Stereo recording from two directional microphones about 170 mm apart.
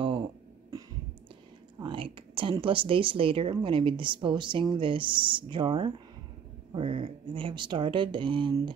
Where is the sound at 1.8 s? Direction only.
30° right (ahead or behind).